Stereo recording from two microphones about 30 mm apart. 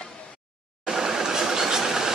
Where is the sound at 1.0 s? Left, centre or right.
Centre.